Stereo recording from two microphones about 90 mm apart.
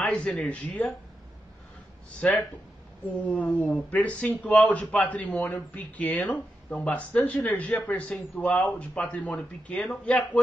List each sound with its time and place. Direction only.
0.0 s speech: 15° left (ahead or behind)
2.2 s speech: 10° left (ahead or behind)